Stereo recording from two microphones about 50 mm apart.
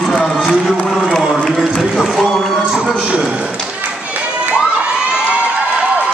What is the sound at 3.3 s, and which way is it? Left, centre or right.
Speech, centre.